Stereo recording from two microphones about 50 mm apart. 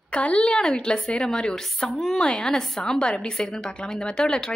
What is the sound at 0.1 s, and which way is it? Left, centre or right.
A woman's voice, left.